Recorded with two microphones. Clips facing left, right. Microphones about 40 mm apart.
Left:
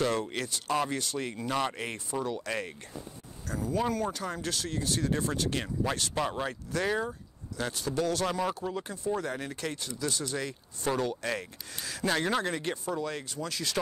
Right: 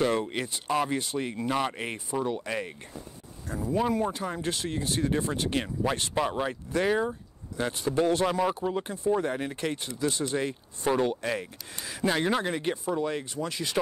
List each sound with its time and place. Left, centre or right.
0.0 s speech: centre
1.4 s speech: centre
6.1 s speech: centre
7.5 s speech: right
8.3 s speech: centre
8.6 s speech: right